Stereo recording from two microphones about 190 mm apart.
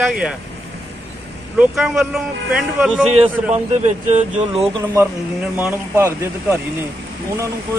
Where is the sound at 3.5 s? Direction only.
40° right (ahead or behind).